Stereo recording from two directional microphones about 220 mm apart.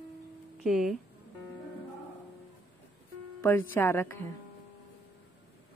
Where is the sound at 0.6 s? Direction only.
Centre (ahead or behind).